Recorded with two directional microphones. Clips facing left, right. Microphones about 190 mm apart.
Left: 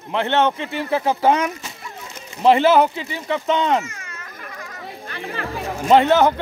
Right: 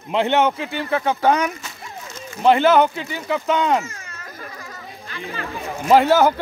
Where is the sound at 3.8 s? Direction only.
35° right (ahead or behind).